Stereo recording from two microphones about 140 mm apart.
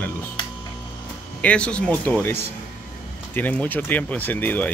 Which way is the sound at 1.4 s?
10° left (ahead or behind).